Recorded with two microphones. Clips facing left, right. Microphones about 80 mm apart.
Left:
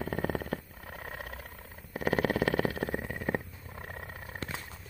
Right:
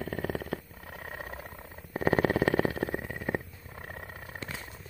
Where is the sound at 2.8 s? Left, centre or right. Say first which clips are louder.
Right 1 dB; centre.